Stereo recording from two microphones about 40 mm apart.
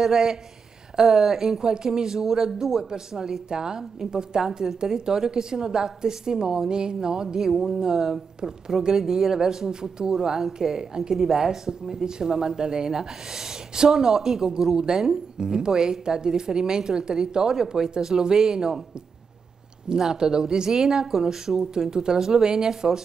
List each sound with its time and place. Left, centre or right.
0.0 s speech: centre
19.9 s speech: centre